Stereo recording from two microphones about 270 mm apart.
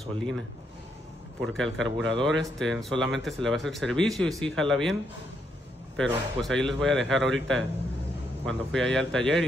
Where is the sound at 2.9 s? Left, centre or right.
Right.